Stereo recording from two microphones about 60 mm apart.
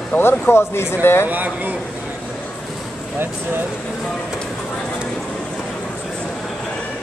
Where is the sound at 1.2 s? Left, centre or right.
Right.